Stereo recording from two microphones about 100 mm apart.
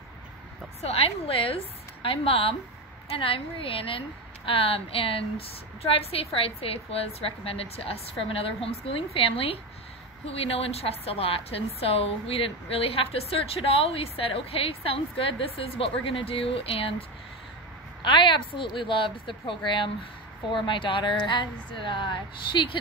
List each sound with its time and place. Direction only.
0.7 s a woman's voice: 85° left; by 5.2 s 65° left (ahead or behind)
5.8 s a woman's voice: 80° left
10.2 s a woman's voice: 80° left
18.0 s speech: 55° left (ahead or behind)